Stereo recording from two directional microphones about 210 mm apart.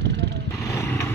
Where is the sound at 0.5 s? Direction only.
10° left (ahead or behind).